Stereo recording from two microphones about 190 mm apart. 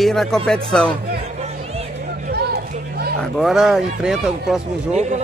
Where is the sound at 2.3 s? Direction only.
55° right (ahead or behind).